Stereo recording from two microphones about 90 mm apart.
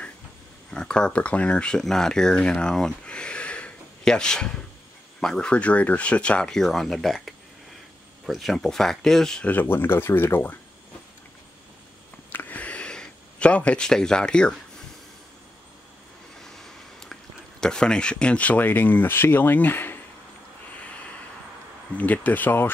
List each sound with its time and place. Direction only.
0.7 s speech: 10° left (ahead or behind)
9.5 s speech: 25° left (ahead or behind)
12.3 s a sound: 20° left (ahead or behind)
16.5 s speech: 5° left (ahead or behind); by 20.0 s 25° left (ahead or behind)
21.9 s speech: 15° left (ahead or behind)